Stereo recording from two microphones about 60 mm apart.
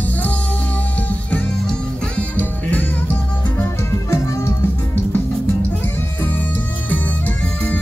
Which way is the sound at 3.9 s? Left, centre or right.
Left.